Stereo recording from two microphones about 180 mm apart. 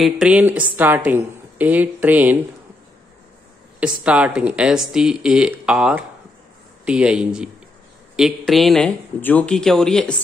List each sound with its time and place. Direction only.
0.0 s speech: 5° right (ahead or behind)
3.8 s speech: 5° right (ahead or behind)
8.5 s speech: centre (ahead or behind)